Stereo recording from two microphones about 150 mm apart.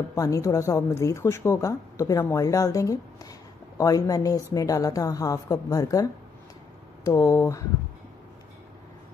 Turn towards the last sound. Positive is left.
turn(degrees=20)  # may be behind; listen again after turning